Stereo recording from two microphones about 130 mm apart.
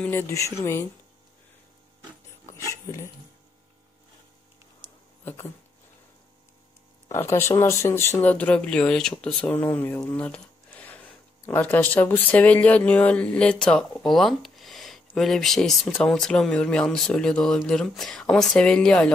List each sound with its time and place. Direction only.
0.0 s speech: 15° left (ahead or behind)
2.7 s speech: 20° left (ahead or behind)
4.8 s a sound: 35° right (ahead or behind)
5.2 s speech: 15° left (ahead or behind)
7.1 s speech: 20° left (ahead or behind)